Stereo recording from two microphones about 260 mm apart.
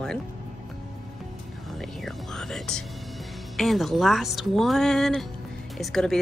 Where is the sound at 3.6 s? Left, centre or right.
Centre.